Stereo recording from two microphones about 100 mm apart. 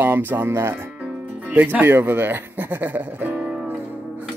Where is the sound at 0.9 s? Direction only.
15° right (ahead or behind).